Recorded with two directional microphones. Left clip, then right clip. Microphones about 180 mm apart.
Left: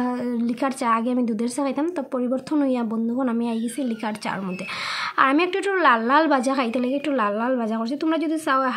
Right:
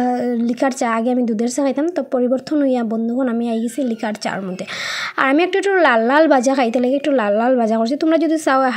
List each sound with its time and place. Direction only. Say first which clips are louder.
0.0 s a woman's voice: right 7 dB; 25° right (ahead or behind)
5.2 s a woman's voice: right 4 dB; 20° right (ahead or behind)